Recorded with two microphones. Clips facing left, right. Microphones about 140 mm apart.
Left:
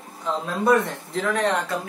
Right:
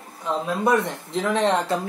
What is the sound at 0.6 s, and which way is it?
Speech, 20° right (ahead or behind).